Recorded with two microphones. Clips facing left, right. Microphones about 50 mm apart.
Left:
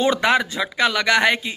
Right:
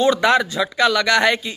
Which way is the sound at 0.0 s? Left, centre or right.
Left.